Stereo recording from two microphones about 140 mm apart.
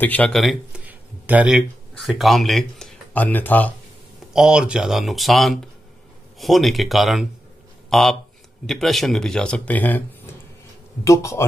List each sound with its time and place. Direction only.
0.0 s speech: 10° left (ahead or behind)
0.4 s speech: centre (ahead or behind)
0.8 s speech: 10° right (ahead or behind); by 3.7 s 10° left (ahead or behind)
4.3 s speech: 5° right (ahead or behind); by 10.0 s 10° left (ahead or behind)
11.1 s speech: 20° left (ahead or behind)